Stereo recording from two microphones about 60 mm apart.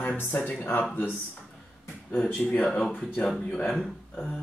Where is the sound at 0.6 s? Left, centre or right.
Left.